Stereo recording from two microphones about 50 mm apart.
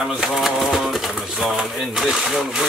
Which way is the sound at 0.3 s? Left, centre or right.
Centre.